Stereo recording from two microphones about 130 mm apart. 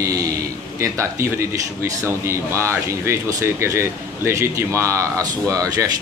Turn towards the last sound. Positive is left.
turn(degrees=-25)  # may be behind; listen again after turning